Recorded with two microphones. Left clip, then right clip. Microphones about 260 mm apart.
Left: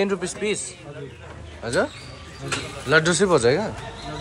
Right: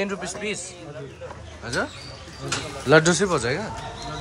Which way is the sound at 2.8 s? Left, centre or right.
Centre.